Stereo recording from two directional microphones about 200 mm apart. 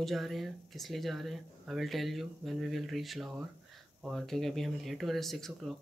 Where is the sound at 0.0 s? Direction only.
Centre (ahead or behind).